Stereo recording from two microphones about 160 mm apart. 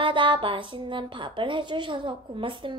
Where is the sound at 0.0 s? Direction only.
30° right (ahead or behind).